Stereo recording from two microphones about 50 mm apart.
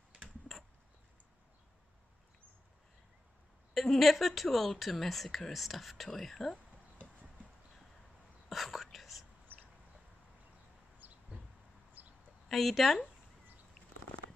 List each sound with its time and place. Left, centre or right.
3.7 s a woman's voice: centre
8.5 s whispering: centre
11.0 s a sound: right
12.4 s speech: centre